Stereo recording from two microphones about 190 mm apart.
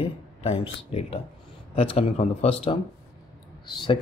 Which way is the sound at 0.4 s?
30° left (ahead or behind).